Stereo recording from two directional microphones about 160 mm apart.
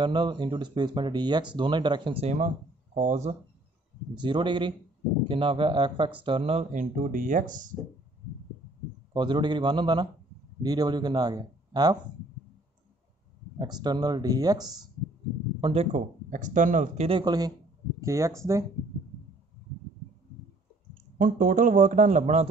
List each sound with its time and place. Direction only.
0.0 s speech: 30° right (ahead or behind)
2.3 s speech: 50° right (ahead or behind)
4.1 s speech: 30° right (ahead or behind)
6.7 s speech: 55° right (ahead or behind)
9.1 s speech: 30° right (ahead or behind)
13.6 s speech: 25° right (ahead or behind)
15.6 s speech: 40° right (ahead or behind)
17.2 s speech: 25° right (ahead or behind)
21.2 s speech: 55° right (ahead or behind)